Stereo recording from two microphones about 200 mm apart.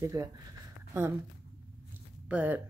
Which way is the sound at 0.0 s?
15° right (ahead or behind).